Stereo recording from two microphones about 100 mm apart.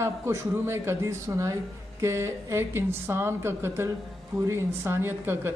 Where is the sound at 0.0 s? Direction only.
25° right (ahead or behind).